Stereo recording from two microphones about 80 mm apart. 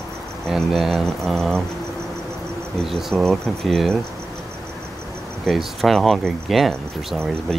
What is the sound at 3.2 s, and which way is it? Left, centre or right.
Speech, centre.